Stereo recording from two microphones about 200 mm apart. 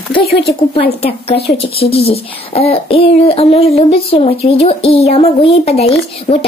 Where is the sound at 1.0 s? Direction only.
30° left (ahead or behind).